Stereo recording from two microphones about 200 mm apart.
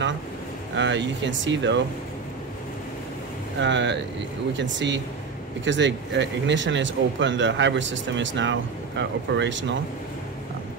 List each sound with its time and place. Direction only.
0.7 s speech: 65° right (ahead or behind)
3.6 s speech: 65° right (ahead or behind)